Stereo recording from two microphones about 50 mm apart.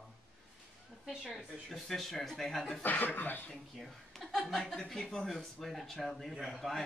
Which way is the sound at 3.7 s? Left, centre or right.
Centre.